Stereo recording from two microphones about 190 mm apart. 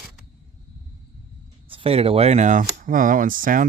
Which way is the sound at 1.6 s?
30° right (ahead or behind).